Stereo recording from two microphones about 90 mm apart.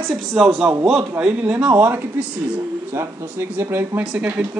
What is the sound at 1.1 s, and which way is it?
Speech, 15° right (ahead or behind).